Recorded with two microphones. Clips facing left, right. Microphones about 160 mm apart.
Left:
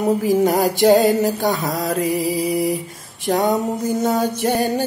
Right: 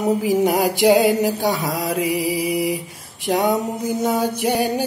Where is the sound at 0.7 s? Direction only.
45° left (ahead or behind).